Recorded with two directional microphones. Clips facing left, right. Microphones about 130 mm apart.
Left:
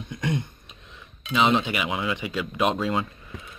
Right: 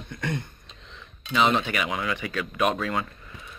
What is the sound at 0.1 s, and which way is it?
Speech, 15° left (ahead or behind).